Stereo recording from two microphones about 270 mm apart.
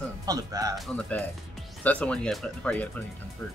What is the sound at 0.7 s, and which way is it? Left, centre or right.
Speech, centre.